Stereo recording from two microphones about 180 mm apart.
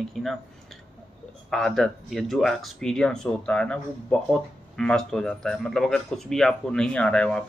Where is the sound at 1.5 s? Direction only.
Centre (ahead or behind).